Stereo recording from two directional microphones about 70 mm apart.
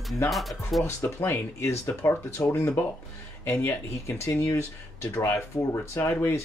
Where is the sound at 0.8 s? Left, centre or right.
Left.